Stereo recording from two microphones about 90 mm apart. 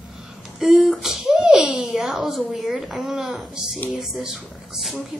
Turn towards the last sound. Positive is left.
turn(degrees=0)  # may be behind; listen again after turning